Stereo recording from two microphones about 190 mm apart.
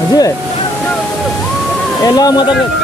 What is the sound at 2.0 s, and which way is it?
Speech, 20° left (ahead or behind).